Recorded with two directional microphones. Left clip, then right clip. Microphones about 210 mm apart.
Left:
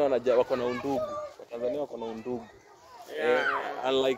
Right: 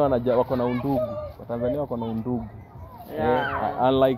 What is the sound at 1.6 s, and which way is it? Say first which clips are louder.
Speech: right 4 dB; 5° left (ahead or behind).